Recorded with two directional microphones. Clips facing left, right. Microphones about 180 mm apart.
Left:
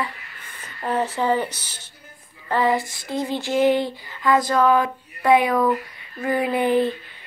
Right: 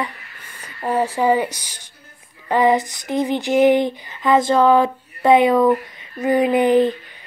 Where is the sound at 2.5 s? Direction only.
20° right (ahead or behind).